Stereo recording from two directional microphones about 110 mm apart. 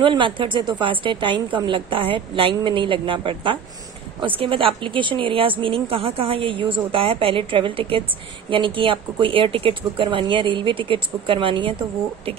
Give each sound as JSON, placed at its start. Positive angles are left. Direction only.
{"t": 0.0, "sound": "a woman's voice", "side_deg": -50}